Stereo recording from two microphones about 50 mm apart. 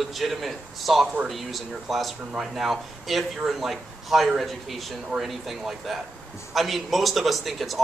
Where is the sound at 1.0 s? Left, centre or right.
Right.